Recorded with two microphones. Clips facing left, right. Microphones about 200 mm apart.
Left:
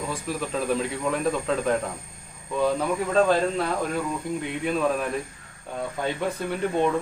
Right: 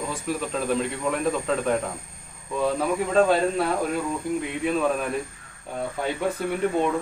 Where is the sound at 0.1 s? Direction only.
Centre (ahead or behind).